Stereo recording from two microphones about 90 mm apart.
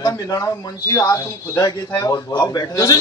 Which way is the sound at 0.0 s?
45° left (ahead or behind).